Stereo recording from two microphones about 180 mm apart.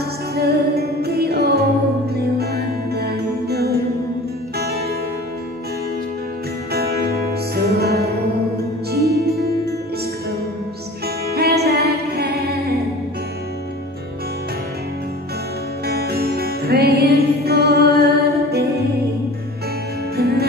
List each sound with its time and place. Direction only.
0.3 s music: 60° right (ahead or behind)
6.7 s music: 60° right (ahead or behind)
11.2 s music: 60° right (ahead or behind)
15.9 s music: 60° right (ahead or behind)
20.2 s music: 60° right (ahead or behind)